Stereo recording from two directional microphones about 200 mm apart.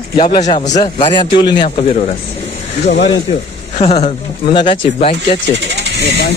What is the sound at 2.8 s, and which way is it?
Speech, 60° left (ahead or behind).